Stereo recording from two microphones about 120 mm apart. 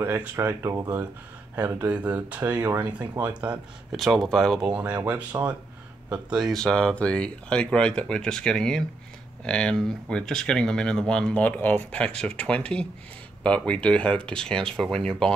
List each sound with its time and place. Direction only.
0.0 s speech: 20° right (ahead or behind)
3.9 s speech: centre (ahead or behind)
4.6 s speech: 10° right (ahead or behind)
6.5 s speech: 5° left (ahead or behind)